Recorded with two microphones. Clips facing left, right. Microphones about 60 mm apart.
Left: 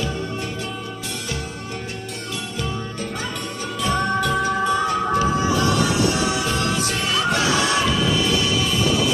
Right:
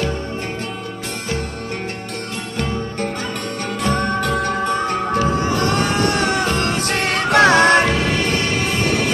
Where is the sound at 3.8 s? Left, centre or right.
Right.